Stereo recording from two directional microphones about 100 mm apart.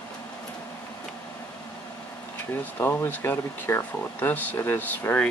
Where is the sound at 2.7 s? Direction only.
20° left (ahead or behind).